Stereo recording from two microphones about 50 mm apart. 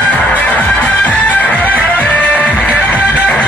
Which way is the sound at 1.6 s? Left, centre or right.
Left.